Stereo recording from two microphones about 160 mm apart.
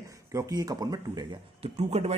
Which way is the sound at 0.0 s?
20° right (ahead or behind).